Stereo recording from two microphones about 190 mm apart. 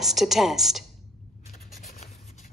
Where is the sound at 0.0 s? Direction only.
Centre (ahead or behind).